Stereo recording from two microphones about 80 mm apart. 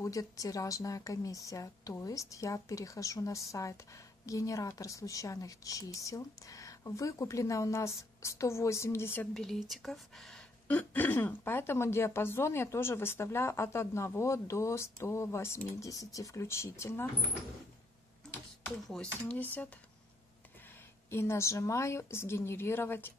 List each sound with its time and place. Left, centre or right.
0.0 s a woman's voice: left
9.3 s speech: centre
10.7 s a woman's voice: left
19.2 s speech: left
21.1 s a woman's voice: left